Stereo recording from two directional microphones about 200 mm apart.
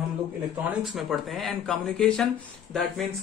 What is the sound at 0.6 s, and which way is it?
Speech, centre (ahead or behind).